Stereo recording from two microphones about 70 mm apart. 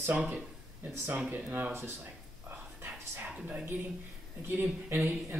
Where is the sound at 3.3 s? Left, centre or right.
Centre.